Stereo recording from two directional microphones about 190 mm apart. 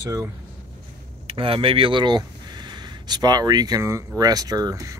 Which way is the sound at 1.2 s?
30° right (ahead or behind).